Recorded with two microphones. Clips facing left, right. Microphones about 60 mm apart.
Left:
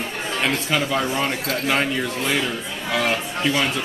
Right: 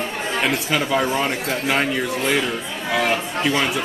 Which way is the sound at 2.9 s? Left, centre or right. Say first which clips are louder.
Right 2 dB; centre.